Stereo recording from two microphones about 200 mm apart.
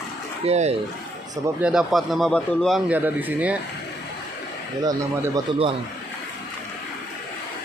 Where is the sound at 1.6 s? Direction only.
5° right (ahead or behind).